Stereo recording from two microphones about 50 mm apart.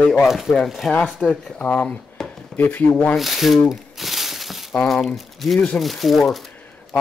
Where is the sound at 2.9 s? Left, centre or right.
Left.